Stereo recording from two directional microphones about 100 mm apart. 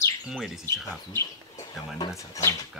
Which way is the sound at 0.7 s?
25° left (ahead or behind).